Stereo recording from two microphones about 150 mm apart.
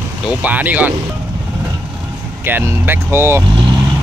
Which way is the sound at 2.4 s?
15° right (ahead or behind).